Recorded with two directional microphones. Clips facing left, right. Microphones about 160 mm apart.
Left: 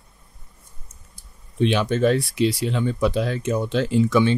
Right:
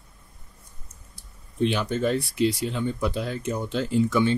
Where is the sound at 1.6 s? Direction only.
85° left.